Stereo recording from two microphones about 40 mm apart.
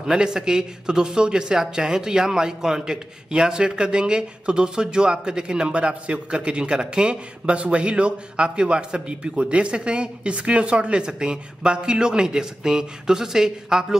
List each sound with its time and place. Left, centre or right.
0.0 s speech: centre